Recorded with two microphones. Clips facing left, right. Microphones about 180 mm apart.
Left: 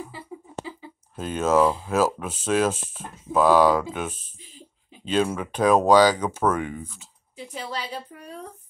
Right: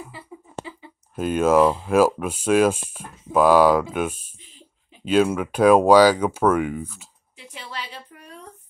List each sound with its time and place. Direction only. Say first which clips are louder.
1.1 s speech: right 4 dB; 10° right (ahead or behind)
7.5 s a woman's voice: left 4 dB; 40° left (ahead or behind)